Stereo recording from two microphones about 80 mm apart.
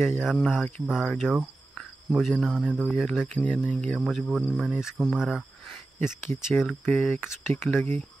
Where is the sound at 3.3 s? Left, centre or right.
Centre.